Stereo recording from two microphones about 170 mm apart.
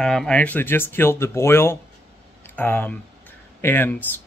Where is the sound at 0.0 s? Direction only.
5° left (ahead or behind).